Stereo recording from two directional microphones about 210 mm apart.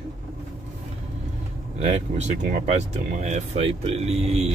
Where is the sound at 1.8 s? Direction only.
35° right (ahead or behind).